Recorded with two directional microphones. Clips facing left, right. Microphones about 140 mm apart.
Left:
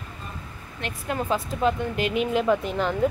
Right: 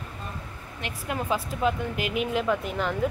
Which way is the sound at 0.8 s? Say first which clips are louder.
Left 3 dB; 10° right (ahead or behind).